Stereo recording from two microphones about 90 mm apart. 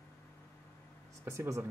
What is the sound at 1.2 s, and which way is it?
Speech, 35° right (ahead or behind).